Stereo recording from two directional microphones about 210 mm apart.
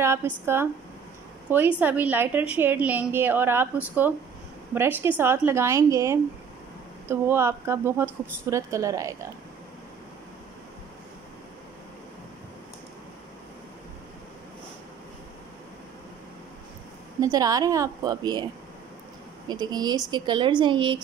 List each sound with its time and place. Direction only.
0.0 s a woman's voice: 10° right (ahead or behind)
17.2 s a woman's voice: 15° right (ahead or behind)
19.4 s speech: 20° right (ahead or behind)